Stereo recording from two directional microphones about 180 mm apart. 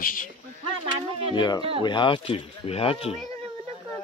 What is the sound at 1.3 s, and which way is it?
Speech, 25° left (ahead or behind).